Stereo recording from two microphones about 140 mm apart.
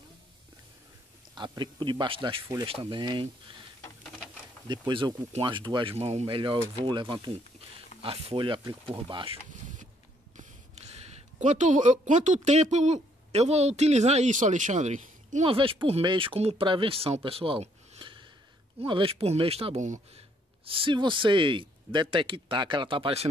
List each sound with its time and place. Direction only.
1.3 s speech: 30° right (ahead or behind)
4.6 s speech: 30° right (ahead or behind)
5.9 s speech: 50° right (ahead or behind)
15.4 s speech: 40° right (ahead or behind)
20.6 s speech: 40° right (ahead or behind)